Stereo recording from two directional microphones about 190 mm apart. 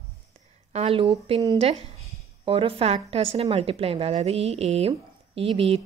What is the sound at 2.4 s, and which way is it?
A woman's voice, 30° right (ahead or behind).